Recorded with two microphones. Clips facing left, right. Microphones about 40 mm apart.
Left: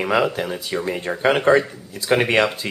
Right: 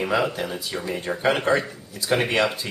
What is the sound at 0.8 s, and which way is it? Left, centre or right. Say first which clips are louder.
Speech: left 3 dB; left.